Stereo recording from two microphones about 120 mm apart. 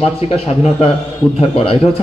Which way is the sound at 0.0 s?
50° left (ahead or behind).